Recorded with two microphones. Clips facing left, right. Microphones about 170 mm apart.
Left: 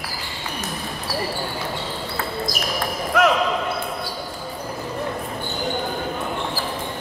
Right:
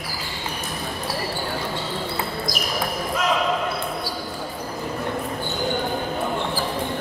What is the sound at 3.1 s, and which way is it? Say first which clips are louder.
Basketball bounce: left 9 dB; 70° left (ahead or behind).